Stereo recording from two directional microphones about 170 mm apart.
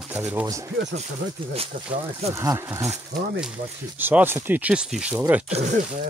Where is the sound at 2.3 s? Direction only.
20° right (ahead or behind).